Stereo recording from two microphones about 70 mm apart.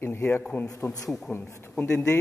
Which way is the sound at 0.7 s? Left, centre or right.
Left.